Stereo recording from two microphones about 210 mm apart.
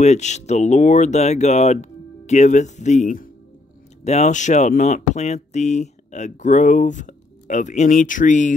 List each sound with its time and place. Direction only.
0.0 s speech: 35° left (ahead or behind)